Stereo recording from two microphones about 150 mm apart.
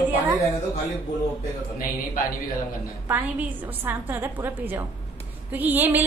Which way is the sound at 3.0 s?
10° right (ahead or behind).